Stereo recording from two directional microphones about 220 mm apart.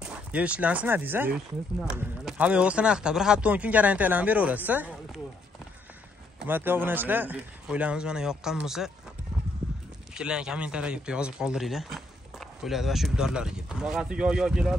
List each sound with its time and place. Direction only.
0.0 s speech: 5° right (ahead or behind)
6.4 s speech: 10° right (ahead or behind)
10.1 s speech: 5° right (ahead or behind)